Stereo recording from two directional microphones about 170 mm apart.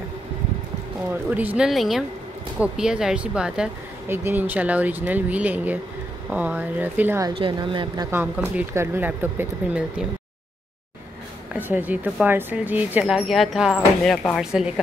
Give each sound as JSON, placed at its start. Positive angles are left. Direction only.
{"t": 1.3, "sound": "speech", "side_deg": -10}
{"t": 7.2, "sound": "speech", "side_deg": -30}
{"t": 11.5, "sound": "speech", "side_deg": -10}